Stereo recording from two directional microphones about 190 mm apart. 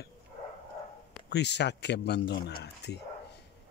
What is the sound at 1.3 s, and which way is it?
Speech, 65° left (ahead or behind).